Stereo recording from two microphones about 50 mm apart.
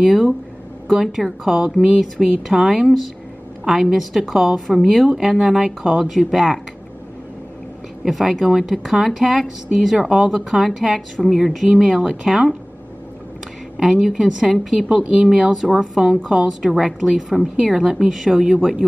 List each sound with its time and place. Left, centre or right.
0.0 s a woman's voice: centre
8.0 s a woman's voice: centre
13.7 s a woman's voice: centre